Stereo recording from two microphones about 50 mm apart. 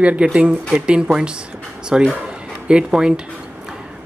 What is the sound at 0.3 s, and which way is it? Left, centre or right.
Speech, centre.